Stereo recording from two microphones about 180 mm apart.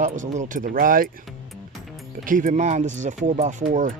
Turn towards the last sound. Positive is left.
turn(degrees=-45)  # may be behind; listen again after turning